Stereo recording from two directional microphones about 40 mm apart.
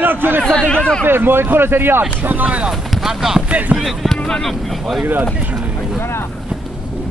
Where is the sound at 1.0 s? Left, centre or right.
Right.